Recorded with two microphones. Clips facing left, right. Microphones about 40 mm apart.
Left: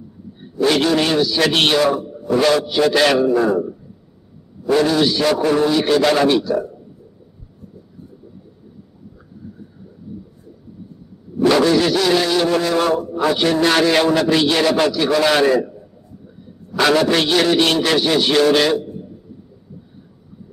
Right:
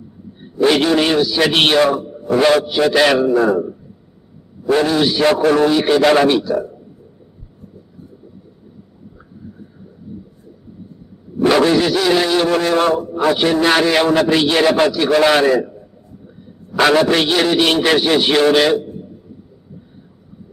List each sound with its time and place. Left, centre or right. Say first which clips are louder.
0.7 s a man's voice: right 2 dB; centre
1.9 s a sound: right 1 dB; centre
2.3 s a man's voice: right 2 dB; right
2.6 s a man's voice: right 1 dB; centre
4.8 s a man's voice: right 1 dB; centre
5.2 s a man's voice: right 3 dB; right
5.7 s a man's voice: right 3 dB; right
11.4 s dog: right 1 dB; centre
11.8 s a man's voice: right 1 dB; centre; by 12.9 s right
12.9 s a man's voice: right 2 dB; centre
16.7 s a man's voice: right 2 dB; centre